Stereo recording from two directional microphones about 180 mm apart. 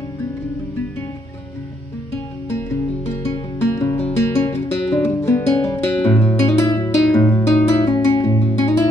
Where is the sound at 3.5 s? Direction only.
15° left (ahead or behind).